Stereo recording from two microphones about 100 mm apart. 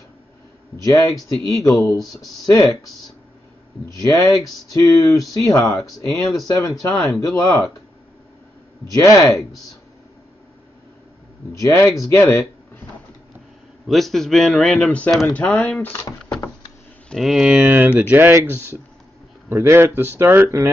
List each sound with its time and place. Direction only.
0.8 s speech: 35° left (ahead or behind)
3.9 s speech: 35° left (ahead or behind)
8.9 s speech: 35° left (ahead or behind)
11.5 s speech: 35° left (ahead or behind)
13.8 s a man's voice: centre (ahead or behind); by 16.0 s 15° left (ahead or behind)
17.1 s speech: centre (ahead or behind); by 18.4 s 20° right (ahead or behind)
19.5 s speech: 25° right (ahead or behind)